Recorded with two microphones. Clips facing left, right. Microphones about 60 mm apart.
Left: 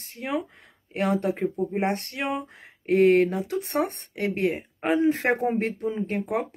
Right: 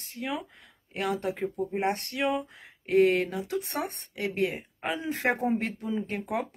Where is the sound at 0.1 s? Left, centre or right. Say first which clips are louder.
Left 4 dB; left.